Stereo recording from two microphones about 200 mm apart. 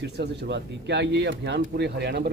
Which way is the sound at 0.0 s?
55° right (ahead or behind).